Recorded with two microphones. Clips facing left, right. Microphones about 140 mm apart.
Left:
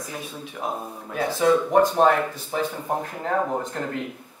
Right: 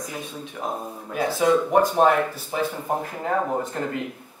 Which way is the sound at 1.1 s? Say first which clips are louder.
Even; 5° right (ahead or behind).